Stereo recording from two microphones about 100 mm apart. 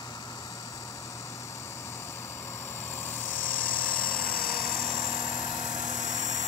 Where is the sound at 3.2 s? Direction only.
20° left (ahead or behind).